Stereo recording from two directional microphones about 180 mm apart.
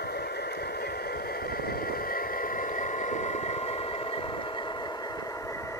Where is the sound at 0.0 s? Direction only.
65° left (ahead or behind).